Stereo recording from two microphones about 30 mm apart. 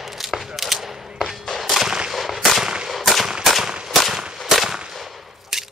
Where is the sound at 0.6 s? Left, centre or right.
Centre.